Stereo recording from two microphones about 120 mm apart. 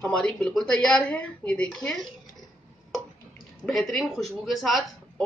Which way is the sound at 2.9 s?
Centre (ahead or behind).